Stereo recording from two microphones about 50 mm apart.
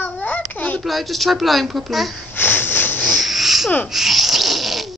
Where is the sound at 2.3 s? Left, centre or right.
Left.